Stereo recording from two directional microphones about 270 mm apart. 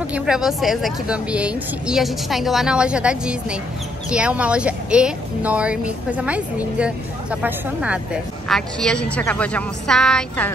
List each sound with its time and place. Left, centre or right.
0.1 s speech: centre